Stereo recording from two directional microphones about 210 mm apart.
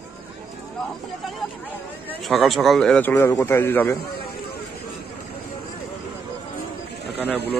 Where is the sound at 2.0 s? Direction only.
Centre (ahead or behind).